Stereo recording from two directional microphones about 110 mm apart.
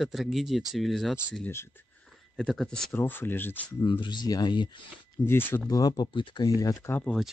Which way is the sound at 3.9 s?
45° left (ahead or behind).